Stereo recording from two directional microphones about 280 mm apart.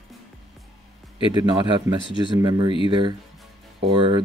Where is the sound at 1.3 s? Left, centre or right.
Centre.